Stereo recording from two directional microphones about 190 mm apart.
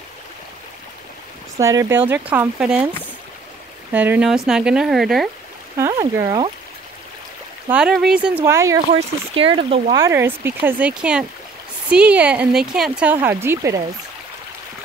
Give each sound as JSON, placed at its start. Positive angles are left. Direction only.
{"t": 1.6, "sound": "speech", "side_deg": -15}
{"t": 3.9, "sound": "speech", "side_deg": -10}
{"t": 5.9, "sound": "speech", "side_deg": -20}
{"t": 7.7, "sound": "speech", "side_deg": -5}
{"t": 9.3, "sound": "speech", "side_deg": -30}
{"t": 9.9, "sound": "speech", "side_deg": -15}